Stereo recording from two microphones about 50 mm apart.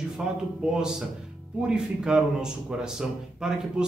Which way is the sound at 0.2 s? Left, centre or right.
Centre.